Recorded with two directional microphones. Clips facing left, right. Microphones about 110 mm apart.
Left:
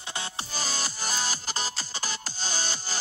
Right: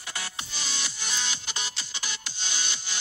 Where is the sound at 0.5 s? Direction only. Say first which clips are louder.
Left 5 dB; 40° left (ahead or behind).